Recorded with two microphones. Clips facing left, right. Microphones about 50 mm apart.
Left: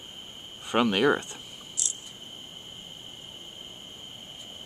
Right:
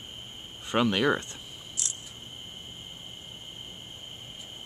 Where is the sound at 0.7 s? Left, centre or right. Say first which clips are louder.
Left 2 dB; centre.